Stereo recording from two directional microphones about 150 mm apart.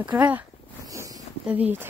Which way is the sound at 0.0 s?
10° right (ahead or behind).